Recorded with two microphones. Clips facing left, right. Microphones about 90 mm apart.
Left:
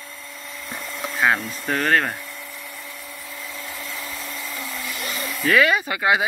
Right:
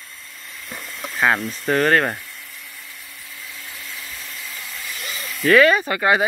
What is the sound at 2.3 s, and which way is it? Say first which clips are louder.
Vacuum cleaner: left 4 dB; 65° left (ahead or behind).